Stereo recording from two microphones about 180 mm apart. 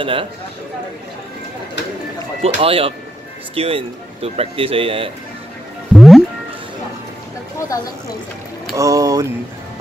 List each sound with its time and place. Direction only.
0.0 s speech: 30° right (ahead or behind)
2.4 s speech: 30° right (ahead or behind)
5.9 s music: centre (ahead or behind)
7.6 s speech: 20° left (ahead or behind)
8.7 s speech: 20° right (ahead or behind)